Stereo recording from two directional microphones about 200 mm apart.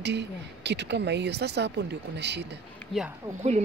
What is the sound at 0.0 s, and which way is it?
Speech, 60° right (ahead or behind).